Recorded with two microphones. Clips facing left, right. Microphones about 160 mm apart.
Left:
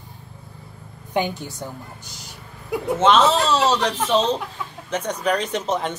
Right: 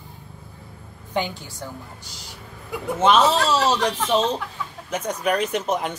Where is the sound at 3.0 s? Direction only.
10° right (ahead or behind).